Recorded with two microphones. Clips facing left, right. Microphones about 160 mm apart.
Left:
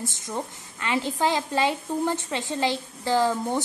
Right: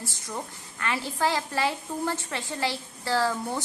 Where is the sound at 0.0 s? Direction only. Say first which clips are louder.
Left 4 dB; 20° left (ahead or behind).